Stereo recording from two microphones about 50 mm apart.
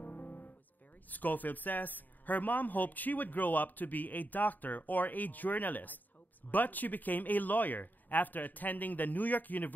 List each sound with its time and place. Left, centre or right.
0.0 s music: left
1.1 s a woman's voice: left